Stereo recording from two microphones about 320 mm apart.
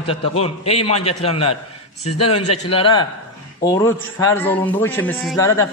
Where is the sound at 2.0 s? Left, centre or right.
Left.